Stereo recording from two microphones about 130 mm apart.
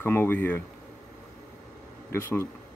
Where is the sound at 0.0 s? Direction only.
15° left (ahead or behind).